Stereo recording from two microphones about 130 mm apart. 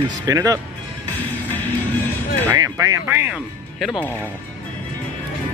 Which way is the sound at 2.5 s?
25° right (ahead or behind).